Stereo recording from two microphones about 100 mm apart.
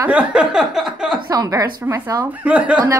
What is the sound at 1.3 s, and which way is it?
Speech, 35° right (ahead or behind).